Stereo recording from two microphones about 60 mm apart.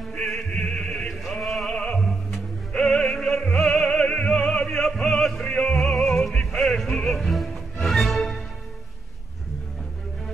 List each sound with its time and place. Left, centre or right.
0.2 s chant: centre
1.7 s music: centre
4.3 s opera: centre
5.5 s music: centre
7.1 s music: centre